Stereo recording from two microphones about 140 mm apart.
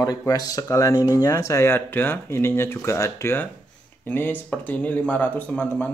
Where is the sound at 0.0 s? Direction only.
25° left (ahead or behind).